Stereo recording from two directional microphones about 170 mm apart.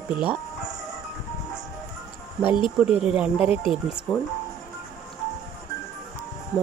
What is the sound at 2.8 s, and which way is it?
Speech, 5° right (ahead or behind).